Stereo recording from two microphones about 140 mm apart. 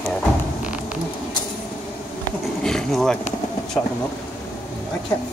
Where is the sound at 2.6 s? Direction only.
5° left (ahead or behind).